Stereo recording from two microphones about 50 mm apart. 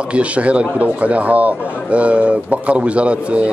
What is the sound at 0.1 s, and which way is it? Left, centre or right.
Speech, right.